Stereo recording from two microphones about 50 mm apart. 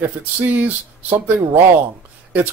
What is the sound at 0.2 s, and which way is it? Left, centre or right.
Speech, right.